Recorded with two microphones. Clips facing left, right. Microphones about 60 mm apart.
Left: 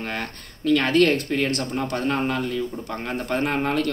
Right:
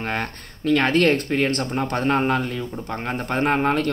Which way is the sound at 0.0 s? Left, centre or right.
Right.